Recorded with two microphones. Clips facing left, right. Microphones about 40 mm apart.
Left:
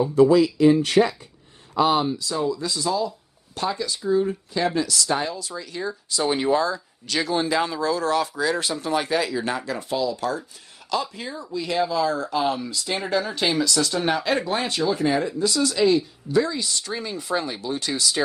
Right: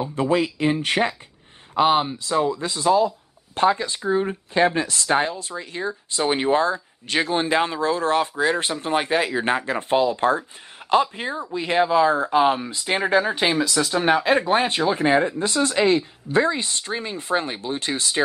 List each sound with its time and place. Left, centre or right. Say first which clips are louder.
0.0 s speech: left 5 dB; right